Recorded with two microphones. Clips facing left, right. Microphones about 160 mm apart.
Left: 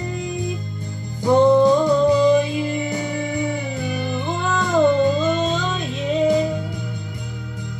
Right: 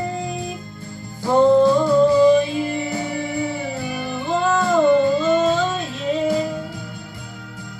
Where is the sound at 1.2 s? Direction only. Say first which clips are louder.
Even; 20° left (ahead or behind).